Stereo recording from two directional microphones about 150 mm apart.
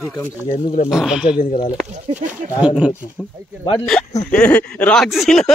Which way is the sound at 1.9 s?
50° right (ahead or behind).